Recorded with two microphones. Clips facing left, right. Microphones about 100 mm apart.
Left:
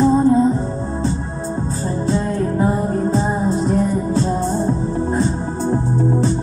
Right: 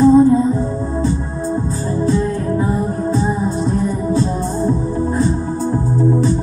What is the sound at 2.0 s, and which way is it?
Music, 35° left (ahead or behind).